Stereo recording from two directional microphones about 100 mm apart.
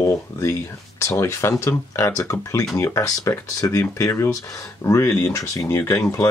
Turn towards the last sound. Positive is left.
turn(degrees=30)  # may be behind; listen again after turning